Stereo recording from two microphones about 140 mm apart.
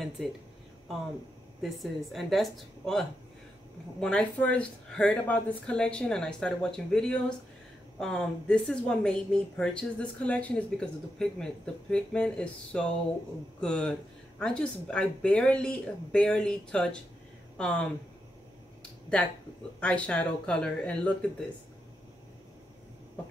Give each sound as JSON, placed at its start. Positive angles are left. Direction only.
{"t": 1.6, "sound": "a woman's voice", "side_deg": 0}
{"t": 18.8, "sound": "a sound", "side_deg": 5}
{"t": 19.8, "sound": "a woman's voice", "side_deg": 10}